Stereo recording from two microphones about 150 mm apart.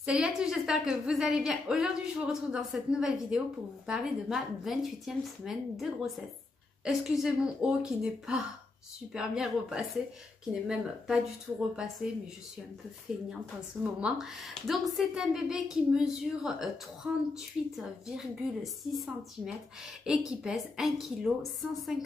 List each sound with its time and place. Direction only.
0.0 s a woman's voice: 5° right (ahead or behind)
13.1 s a woman's voice: 5° right (ahead or behind)